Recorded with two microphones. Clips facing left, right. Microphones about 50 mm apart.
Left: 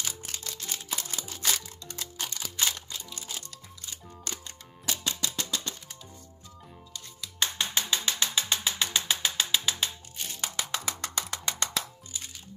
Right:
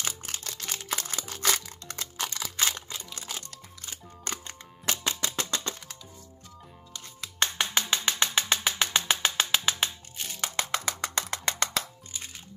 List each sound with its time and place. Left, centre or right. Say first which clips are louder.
0.0 s music: right 2 dB; right
0.5 s music: right 1 dB; right
0.8 s music: right 5 dB; right
3.3 s music: right 1 dB; right
5.3 s a sound: right 2 dB; right
6.9 s music: right 3 dB; right
11.0 s music: right 3 dB; right